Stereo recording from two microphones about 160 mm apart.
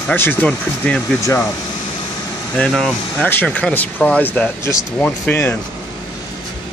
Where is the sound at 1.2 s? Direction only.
20° left (ahead or behind).